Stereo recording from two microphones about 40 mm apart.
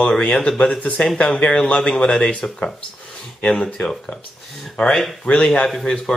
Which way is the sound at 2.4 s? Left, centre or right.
Left.